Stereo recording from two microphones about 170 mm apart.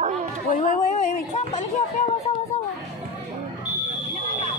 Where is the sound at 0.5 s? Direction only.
45° left (ahead or behind).